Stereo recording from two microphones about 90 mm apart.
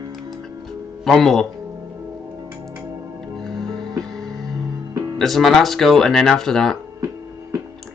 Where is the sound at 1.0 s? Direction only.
5° left (ahead or behind).